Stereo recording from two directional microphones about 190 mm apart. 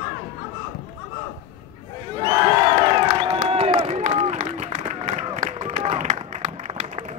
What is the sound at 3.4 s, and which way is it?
Run, 30° right (ahead or behind).